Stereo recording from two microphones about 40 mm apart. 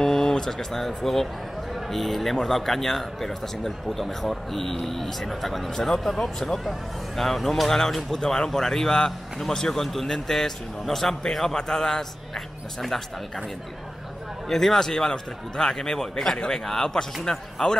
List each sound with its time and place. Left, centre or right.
0.0 s a man's voice: centre
14.5 s a man's voice: centre